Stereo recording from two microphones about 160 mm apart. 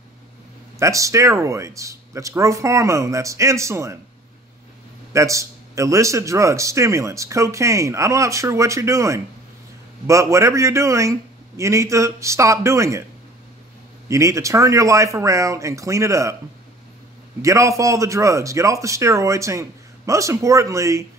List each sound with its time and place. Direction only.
0.7 s a man's voice: 20° right (ahead or behind)
5.1 s a man's voice: 20° right (ahead or behind)
14.0 s a man's voice: 20° right (ahead or behind)
17.4 s a man's voice: 20° right (ahead or behind)